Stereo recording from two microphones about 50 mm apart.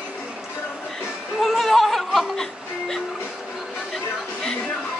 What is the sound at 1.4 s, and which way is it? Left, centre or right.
Speech, centre.